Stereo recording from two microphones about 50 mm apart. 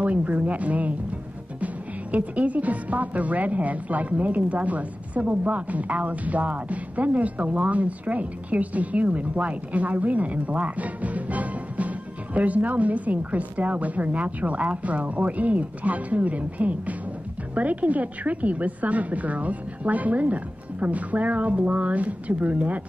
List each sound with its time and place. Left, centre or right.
0.0 s a woman's voice: right
2.1 s a woman's voice: right